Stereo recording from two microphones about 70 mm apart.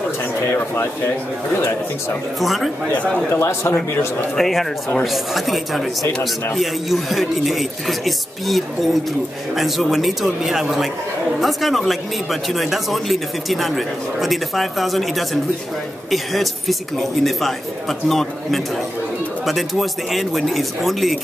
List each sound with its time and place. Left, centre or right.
0.5 s speech: left
2.4 s speech: centre
3.3 s a man's voice: left
4.4 s speech: centre